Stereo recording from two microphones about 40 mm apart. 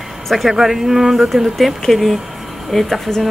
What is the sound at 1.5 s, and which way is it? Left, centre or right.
Speech, centre.